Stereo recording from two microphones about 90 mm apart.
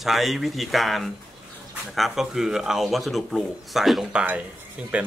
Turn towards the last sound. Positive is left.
turn(degrees=-15)  # may be behind; listen again after turning